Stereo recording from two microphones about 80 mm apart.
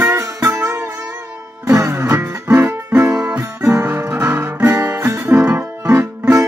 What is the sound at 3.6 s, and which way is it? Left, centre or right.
Guitar, right.